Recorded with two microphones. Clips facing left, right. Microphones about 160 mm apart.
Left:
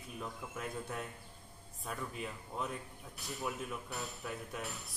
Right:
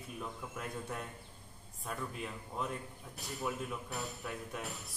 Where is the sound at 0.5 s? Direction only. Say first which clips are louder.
Left 2 dB; centre (ahead or behind).